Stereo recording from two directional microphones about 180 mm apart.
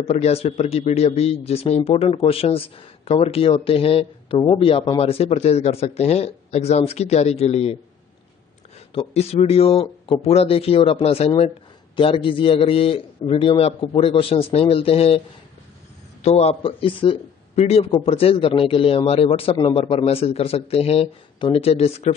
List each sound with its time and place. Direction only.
0.0 s a man's voice: 35° left (ahead or behind)
8.9 s a man's voice: 35° left (ahead or behind)